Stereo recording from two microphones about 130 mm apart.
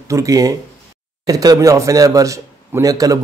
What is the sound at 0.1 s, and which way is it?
Speech, 25° right (ahead or behind).